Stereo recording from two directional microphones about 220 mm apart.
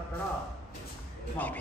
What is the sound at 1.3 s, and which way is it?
Speech, 5° left (ahead or behind).